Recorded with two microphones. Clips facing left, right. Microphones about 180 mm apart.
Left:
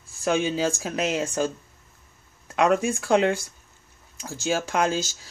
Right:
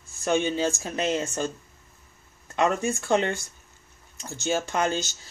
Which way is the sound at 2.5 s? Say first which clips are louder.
Left 3 dB; 10° left (ahead or behind).